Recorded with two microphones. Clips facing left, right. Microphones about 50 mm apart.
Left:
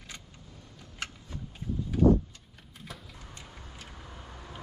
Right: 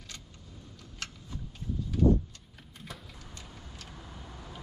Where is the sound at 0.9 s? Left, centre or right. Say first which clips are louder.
Left 3 dB; centre.